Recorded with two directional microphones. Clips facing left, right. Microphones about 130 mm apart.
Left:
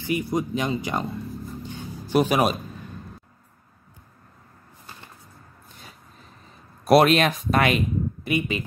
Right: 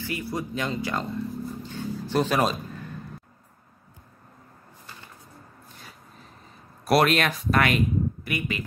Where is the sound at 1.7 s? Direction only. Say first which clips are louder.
Left 4 dB; 15° left (ahead or behind).